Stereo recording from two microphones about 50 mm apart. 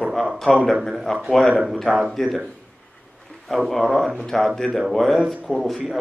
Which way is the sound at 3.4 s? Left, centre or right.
Centre.